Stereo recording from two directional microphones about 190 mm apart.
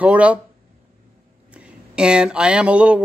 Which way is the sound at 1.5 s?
5° right (ahead or behind).